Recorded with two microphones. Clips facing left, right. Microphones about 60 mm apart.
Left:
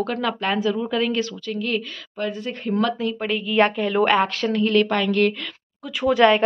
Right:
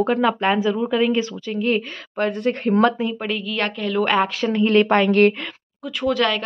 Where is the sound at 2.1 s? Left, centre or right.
Right.